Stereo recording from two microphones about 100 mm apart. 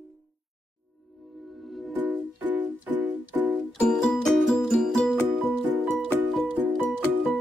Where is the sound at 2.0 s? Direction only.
15° right (ahead or behind).